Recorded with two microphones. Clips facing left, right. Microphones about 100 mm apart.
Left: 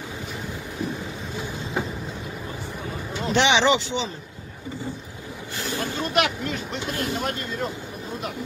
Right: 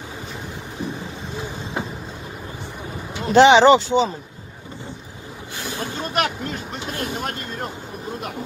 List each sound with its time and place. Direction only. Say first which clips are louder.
3.3 s speech: right 9 dB; 35° right (ahead or behind)
6.0 s vehicle: even; 40° right (ahead or behind)